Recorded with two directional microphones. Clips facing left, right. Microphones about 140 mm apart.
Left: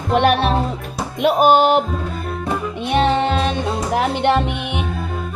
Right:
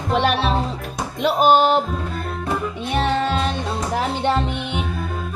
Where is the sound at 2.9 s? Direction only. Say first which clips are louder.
Left 4 dB; 70° left (ahead or behind).